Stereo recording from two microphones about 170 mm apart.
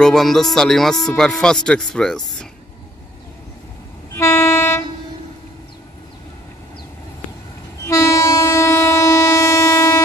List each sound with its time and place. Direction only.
0.0 s music: centre (ahead or behind)
4.2 s train: 15° left (ahead or behind)
7.8 s train: 15° left (ahead or behind)